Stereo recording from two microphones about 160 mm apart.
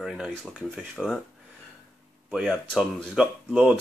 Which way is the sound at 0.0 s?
5° right (ahead or behind).